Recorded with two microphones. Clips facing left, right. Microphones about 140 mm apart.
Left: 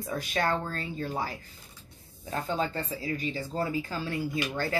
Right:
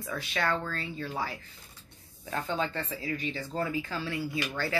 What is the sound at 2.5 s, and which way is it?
Speech, 35° left (ahead or behind).